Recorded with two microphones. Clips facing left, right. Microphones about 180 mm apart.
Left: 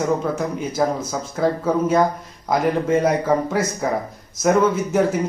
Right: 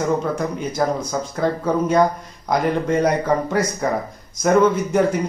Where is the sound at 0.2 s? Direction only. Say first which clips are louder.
Even; 5° left (ahead or behind).